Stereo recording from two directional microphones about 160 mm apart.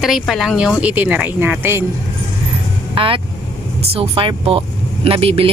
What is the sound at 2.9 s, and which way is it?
Speech, 35° right (ahead or behind).